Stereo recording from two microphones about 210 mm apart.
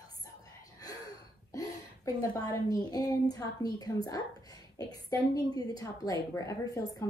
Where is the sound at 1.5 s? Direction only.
15° left (ahead or behind).